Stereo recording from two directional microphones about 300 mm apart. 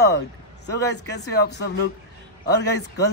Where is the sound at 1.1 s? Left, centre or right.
Left.